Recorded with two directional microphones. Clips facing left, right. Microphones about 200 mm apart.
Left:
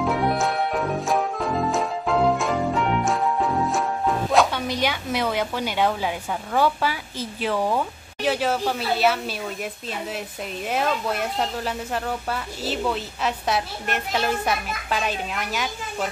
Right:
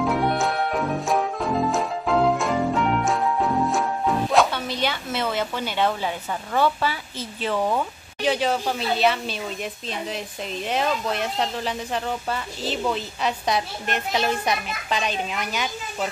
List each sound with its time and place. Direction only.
0.0 s music: centre (ahead or behind)
4.5 s a woman's voice: 15° left (ahead or behind)